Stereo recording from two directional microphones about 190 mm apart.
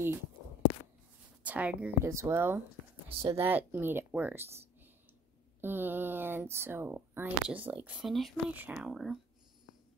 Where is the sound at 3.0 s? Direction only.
30° right (ahead or behind).